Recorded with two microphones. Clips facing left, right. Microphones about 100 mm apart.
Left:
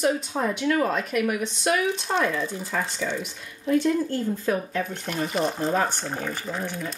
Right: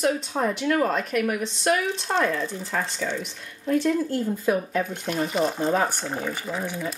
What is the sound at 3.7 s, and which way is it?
Speech, centre (ahead or behind).